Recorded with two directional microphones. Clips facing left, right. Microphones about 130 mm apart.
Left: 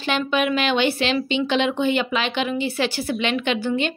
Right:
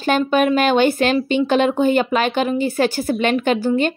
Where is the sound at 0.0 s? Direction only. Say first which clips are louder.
Right 5 dB; 45° right (ahead or behind).